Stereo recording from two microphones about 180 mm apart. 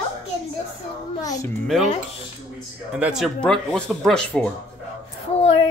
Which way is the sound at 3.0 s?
Centre (ahead or behind).